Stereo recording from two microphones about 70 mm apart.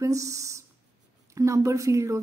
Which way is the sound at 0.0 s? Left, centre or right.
Right.